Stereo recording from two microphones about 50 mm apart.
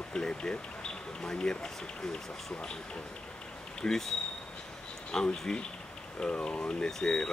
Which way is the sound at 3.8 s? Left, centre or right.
Centre.